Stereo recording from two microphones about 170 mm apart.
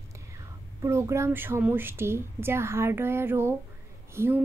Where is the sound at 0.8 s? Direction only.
15° right (ahead or behind).